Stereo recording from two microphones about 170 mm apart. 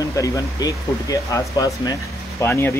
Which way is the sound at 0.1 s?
20° left (ahead or behind).